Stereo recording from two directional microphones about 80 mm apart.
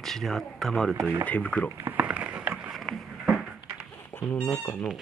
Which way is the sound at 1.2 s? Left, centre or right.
Centre.